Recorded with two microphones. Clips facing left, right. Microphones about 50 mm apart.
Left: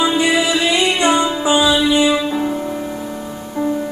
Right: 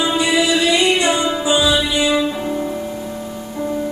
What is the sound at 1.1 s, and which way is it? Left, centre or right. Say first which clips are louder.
Music: left 2 dB; centre.